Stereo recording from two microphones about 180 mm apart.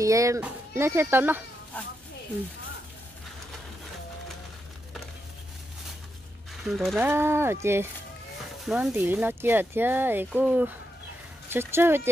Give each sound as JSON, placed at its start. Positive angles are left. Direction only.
{"t": 0.0, "sound": "speech", "side_deg": -15}
{"t": 6.6, "sound": "speech", "side_deg": 0}
{"t": 7.0, "sound": "speech", "side_deg": -15}
{"t": 8.6, "sound": "speech", "side_deg": 0}